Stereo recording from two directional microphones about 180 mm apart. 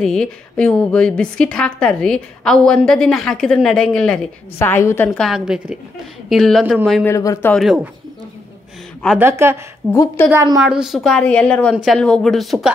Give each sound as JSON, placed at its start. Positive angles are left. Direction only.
{"t": 0.0, "sound": "a woman's voice", "side_deg": 5}
{"t": 6.6, "sound": "a woman's voice", "side_deg": -10}
{"t": 6.9, "sound": "speech", "side_deg": 10}
{"t": 7.5, "sound": "a woman's voice", "side_deg": -5}
{"t": 9.2, "sound": "a woman's voice", "side_deg": -10}
{"t": 10.6, "sound": "a woman's voice", "side_deg": -5}